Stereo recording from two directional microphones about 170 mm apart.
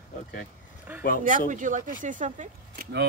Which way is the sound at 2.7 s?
85° right.